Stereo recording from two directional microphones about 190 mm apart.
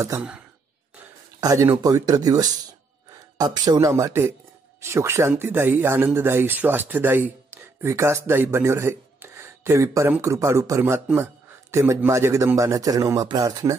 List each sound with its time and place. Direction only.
0.0 s speech: 10° right (ahead or behind)
1.4 s speech: 15° right (ahead or behind)